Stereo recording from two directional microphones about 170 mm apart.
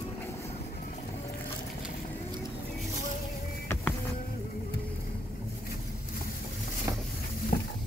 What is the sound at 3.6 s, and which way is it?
Vehicle, 15° left (ahead or behind).